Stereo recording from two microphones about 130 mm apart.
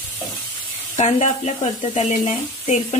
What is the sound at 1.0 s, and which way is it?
Speech, 60° left (ahead or behind).